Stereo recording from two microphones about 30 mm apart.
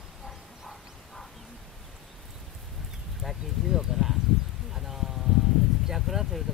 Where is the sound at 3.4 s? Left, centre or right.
Centre.